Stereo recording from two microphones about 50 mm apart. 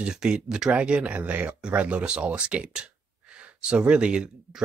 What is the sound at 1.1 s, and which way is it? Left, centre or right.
Speech, right.